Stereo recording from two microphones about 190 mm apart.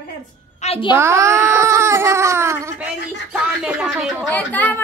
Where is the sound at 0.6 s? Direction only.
30° left (ahead or behind).